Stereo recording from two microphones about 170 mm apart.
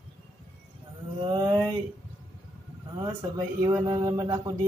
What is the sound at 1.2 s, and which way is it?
Music, 25° right (ahead or behind).